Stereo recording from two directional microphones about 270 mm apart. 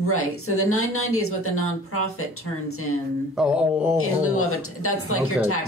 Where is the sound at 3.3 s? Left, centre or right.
Centre.